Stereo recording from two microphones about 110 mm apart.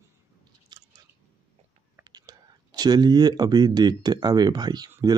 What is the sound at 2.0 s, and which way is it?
Speech, 40° right (ahead or behind).